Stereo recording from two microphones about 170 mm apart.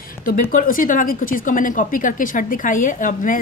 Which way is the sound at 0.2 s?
55° left (ahead or behind).